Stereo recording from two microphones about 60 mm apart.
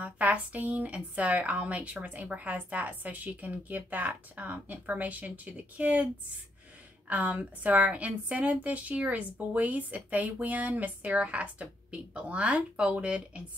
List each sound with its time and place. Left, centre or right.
0.0 s a woman's voice: right
7.1 s a woman's voice: right